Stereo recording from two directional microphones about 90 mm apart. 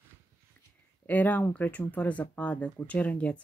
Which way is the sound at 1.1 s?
20° left (ahead or behind).